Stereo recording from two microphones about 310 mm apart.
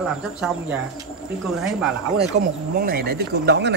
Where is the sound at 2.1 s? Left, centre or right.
Right.